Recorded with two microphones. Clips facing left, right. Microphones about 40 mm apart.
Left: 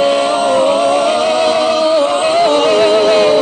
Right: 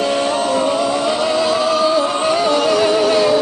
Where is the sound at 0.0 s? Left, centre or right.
Left.